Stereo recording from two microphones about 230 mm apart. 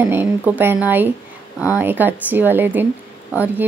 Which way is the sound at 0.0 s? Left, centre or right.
Centre.